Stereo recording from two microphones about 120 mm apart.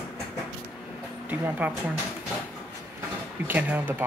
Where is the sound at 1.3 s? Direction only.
10° right (ahead or behind).